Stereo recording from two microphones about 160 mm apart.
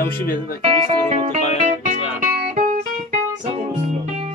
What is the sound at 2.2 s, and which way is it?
Music, 60° right (ahead or behind).